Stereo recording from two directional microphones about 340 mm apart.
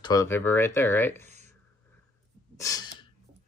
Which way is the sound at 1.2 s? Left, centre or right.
Centre.